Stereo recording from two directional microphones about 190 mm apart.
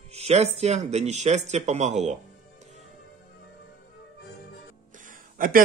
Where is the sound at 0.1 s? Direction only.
35° right (ahead or behind).